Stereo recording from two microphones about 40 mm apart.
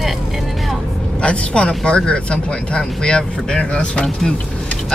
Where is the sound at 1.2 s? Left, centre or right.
Left.